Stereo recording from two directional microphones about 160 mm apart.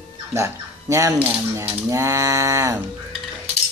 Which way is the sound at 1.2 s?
10° right (ahead or behind).